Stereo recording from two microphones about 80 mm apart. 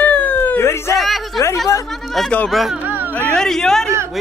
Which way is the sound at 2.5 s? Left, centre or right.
Centre.